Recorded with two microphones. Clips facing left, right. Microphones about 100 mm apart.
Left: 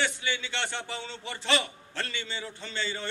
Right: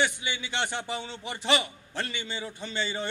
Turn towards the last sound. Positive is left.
turn(degrees=-15)  # may be behind; listen again after turning